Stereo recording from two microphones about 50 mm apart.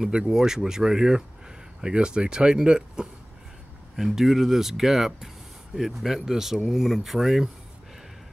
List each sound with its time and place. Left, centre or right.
0.0 s speech: centre
3.9 s speech: centre